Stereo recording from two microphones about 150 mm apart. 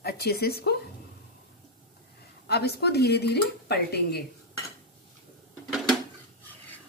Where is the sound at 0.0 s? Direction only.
90° left.